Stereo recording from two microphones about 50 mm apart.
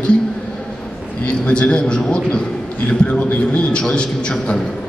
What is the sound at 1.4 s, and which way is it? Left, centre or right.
A man's voice, left.